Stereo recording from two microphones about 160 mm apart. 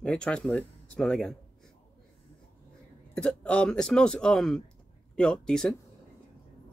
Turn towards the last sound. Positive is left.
turn(degrees=5)  # may be behind; listen again after turning